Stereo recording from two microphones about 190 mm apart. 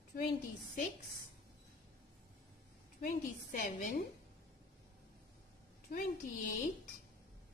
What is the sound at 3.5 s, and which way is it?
Speech, 45° left (ahead or behind).